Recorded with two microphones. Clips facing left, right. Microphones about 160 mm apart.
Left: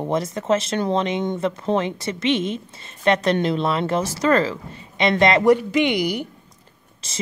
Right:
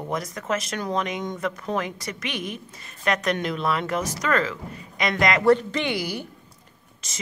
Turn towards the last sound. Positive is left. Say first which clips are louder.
# left 2 dB
turn(degrees=30)  # may be behind; listen again after turning